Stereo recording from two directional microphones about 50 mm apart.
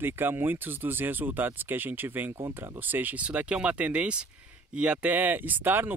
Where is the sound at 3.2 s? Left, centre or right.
Right.